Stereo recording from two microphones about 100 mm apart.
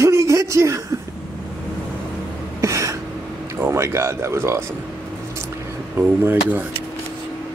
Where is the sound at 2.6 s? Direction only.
30° right (ahead or behind).